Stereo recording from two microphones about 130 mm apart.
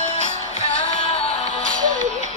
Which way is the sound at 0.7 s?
45° left (ahead or behind).